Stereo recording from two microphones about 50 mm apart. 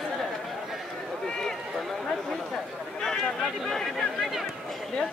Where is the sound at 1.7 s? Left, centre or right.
Centre.